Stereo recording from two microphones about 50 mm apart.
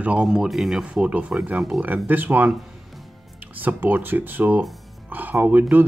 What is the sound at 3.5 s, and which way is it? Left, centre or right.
Speech, right.